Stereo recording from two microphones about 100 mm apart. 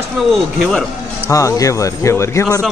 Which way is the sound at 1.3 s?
35° left (ahead or behind).